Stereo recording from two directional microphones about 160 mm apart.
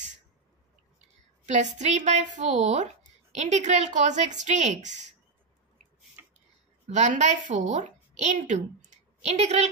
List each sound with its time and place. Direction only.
1.4 s speech: 45° right (ahead or behind)
6.9 s a woman's voice: 50° right (ahead or behind)